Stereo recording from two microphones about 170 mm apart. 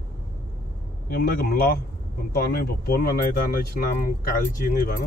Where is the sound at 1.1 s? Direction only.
60° left (ahead or behind).